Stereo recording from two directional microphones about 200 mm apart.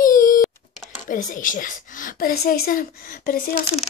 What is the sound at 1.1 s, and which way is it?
Speech, 40° left (ahead or behind).